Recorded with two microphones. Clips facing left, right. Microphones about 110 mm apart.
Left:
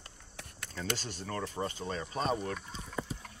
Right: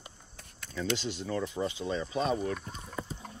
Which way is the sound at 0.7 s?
45° left (ahead or behind).